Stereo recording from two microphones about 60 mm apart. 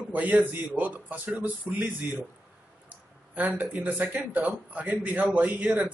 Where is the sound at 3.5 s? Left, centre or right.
Right.